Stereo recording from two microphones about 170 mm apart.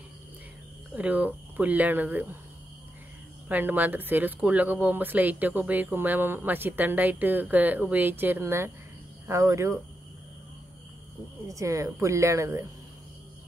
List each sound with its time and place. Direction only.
0.9 s speech: 10° right (ahead or behind)
3.4 s speech: 10° right (ahead or behind)
11.4 s speech: 20° right (ahead or behind)